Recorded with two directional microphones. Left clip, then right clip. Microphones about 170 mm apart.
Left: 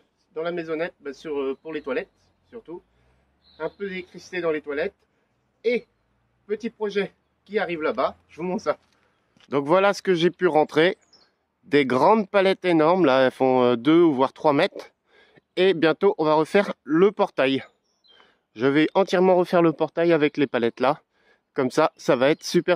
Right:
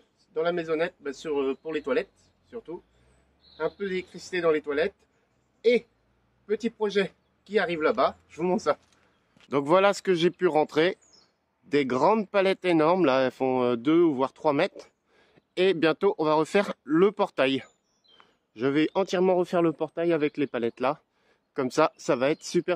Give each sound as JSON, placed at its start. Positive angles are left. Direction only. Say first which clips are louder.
{"t": 0.3, "sound": "speech", "louder": "right 1 dB", "side_deg": 0}
{"t": 9.5, "sound": "speech", "louder": "left 2 dB", "side_deg": 25}
{"t": 18.2, "sound": "speech", "louder": "left 5 dB", "side_deg": 55}
{"t": 21.2, "sound": "speech", "louder": "left 5 dB", "side_deg": 40}